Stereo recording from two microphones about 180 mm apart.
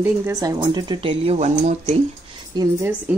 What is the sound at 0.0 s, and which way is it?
Speech, 10° right (ahead or behind).